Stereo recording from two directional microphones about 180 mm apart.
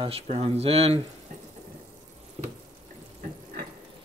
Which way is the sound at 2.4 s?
40° right (ahead or behind).